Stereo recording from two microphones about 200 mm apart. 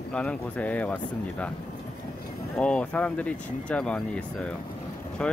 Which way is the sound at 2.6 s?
5° left (ahead or behind).